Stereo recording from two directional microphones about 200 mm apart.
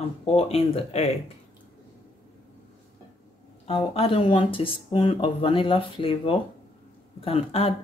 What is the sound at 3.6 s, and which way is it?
Speech, 30° left (ahead or behind).